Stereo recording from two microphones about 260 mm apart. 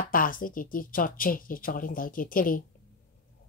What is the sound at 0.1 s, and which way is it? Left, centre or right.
Speech, left.